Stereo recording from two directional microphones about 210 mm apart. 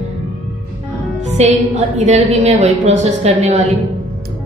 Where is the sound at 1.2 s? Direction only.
35° right (ahead or behind).